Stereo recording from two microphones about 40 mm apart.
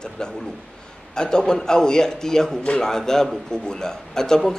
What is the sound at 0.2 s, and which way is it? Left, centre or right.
A man's voice, centre.